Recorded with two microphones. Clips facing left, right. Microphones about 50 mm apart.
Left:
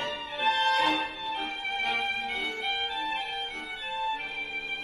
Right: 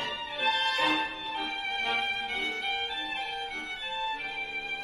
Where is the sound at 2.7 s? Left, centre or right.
Left.